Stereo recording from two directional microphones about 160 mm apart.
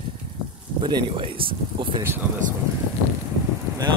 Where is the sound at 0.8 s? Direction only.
30° right (ahead or behind).